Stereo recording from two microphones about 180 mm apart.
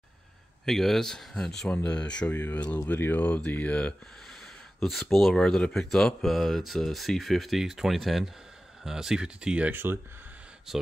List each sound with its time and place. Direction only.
0.7 s speech: centre (ahead or behind)